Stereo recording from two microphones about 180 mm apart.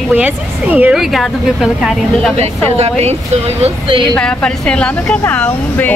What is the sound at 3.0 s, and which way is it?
Speech, 35° right (ahead or behind).